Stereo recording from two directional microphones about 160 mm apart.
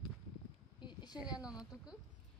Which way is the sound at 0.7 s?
30° left (ahead or behind).